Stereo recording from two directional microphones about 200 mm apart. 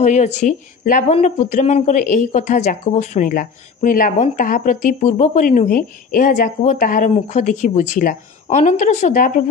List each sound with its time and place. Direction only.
0.0 s speech: 35° left (ahead or behind)